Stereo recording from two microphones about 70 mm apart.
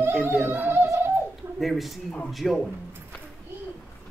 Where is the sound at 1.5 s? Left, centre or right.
Centre.